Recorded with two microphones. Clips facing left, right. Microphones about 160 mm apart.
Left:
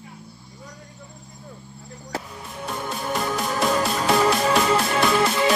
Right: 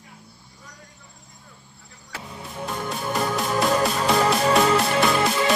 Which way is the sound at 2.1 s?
40° left (ahead or behind).